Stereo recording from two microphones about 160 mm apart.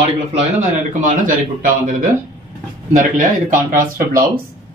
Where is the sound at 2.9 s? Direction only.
55° right (ahead or behind).